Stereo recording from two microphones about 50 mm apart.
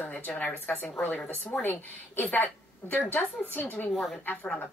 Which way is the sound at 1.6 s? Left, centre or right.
Left.